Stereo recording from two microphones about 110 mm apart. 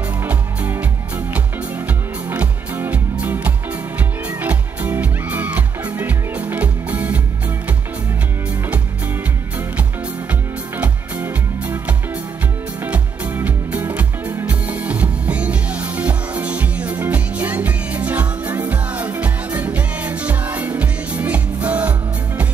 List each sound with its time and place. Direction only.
0.2 s music: 20° right (ahead or behind)
10.8 s music: 15° right (ahead or behind)